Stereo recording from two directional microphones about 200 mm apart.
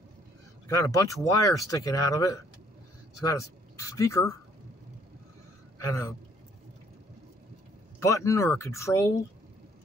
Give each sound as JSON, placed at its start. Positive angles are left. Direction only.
{"t": 0.7, "sound": "speech", "side_deg": 15}
{"t": 5.8, "sound": "speech", "side_deg": 15}
{"t": 8.0, "sound": "speech", "side_deg": 15}